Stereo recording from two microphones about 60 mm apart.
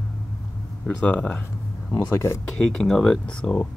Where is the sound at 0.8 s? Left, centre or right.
Left.